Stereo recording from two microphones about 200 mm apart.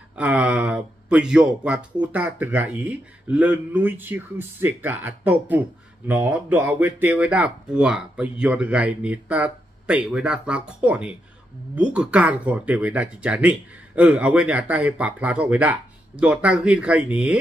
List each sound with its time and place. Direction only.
0.1 s speech: 5° right (ahead or behind)